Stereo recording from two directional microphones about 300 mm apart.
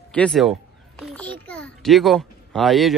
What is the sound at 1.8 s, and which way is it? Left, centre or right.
Speech, centre.